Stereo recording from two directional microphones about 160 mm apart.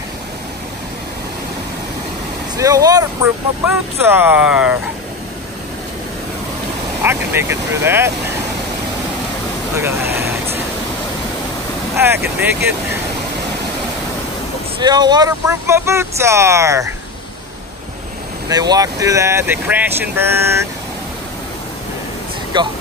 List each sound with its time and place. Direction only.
2.5 s speech: 20° right (ahead or behind)
3.6 s speech: 10° right (ahead or behind)
7.0 s speech: 15° right (ahead or behind)
9.8 s speech: 15° right (ahead or behind)
12.0 s speech: 15° right (ahead or behind)
14.8 s speech: 25° right (ahead or behind)
18.5 s speech: 25° right (ahead or behind)
22.5 s speech: 30° right (ahead or behind)